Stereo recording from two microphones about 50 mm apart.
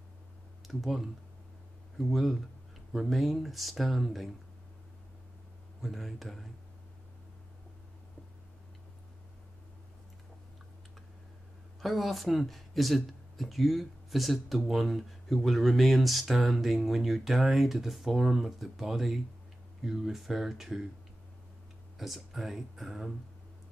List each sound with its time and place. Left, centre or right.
0.7 s speech: centre
5.8 s speech: centre
11.8 s speech: centre
21.9 s speech: centre